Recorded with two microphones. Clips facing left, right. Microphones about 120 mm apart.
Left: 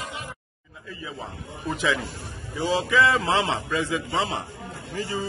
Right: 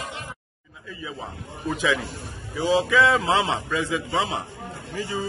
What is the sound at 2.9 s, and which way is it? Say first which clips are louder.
A man's voice: left 2 dB; 15° right (ahead or behind).